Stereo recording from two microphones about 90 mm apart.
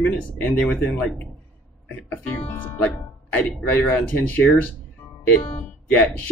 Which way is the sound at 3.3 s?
15° left (ahead or behind).